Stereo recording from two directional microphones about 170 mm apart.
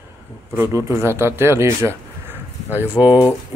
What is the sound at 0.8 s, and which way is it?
Speech, 15° right (ahead or behind).